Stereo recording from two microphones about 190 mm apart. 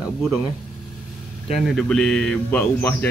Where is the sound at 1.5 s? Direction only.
Centre (ahead or behind).